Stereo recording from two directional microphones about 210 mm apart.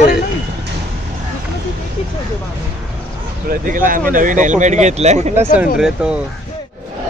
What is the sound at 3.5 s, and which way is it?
Speech, 40° right (ahead or behind).